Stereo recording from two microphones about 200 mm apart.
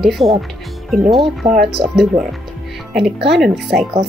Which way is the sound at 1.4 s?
50° right (ahead or behind).